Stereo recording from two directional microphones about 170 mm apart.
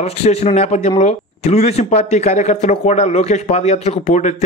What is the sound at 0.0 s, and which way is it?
A man's voice, 40° left (ahead or behind).